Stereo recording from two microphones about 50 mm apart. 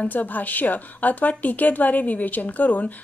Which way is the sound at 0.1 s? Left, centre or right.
Left.